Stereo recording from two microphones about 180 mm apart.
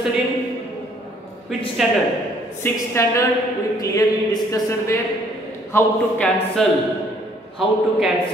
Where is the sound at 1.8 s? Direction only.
Centre (ahead or behind).